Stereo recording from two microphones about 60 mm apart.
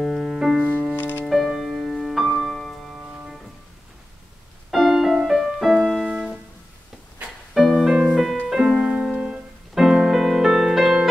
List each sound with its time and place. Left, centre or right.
0.0 s music: centre
0.6 s music: right
0.9 s music: left
1.2 s music: centre
3.0 s music: centre
4.6 s music: centre
7.8 s music: centre